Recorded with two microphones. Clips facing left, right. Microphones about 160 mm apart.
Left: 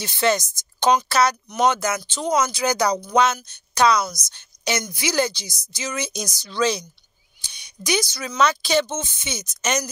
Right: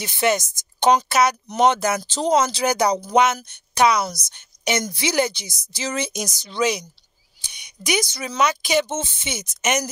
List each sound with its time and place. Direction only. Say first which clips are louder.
0.0 s a woman's voice: even; 20° right (ahead or behind)